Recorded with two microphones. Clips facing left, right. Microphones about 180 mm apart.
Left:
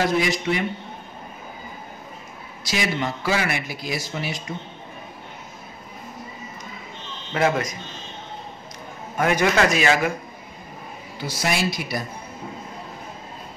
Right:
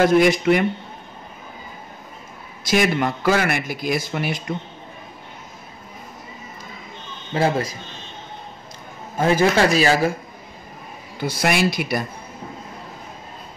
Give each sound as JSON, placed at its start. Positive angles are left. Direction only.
{"t": 0.0, "sound": "speech", "side_deg": -55}
{"t": 2.6, "sound": "a man's voice", "side_deg": -55}
{"t": 7.3, "sound": "a man's voice", "side_deg": -30}
{"t": 9.1, "sound": "a man's voice", "side_deg": -30}
{"t": 11.1, "sound": "speech", "side_deg": -55}